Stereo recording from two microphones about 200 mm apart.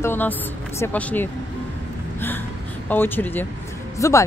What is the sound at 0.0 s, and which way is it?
Speech, 10° left (ahead or behind).